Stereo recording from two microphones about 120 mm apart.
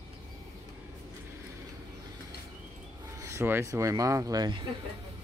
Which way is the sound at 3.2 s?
20° right (ahead or behind).